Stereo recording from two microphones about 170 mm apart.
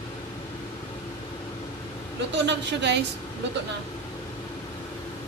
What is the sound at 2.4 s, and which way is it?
Speech, 90° right.